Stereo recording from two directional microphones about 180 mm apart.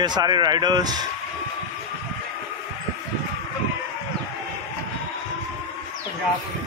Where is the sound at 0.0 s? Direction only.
25° right (ahead or behind).